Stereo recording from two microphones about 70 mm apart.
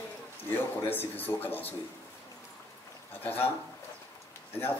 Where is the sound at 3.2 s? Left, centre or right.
Left.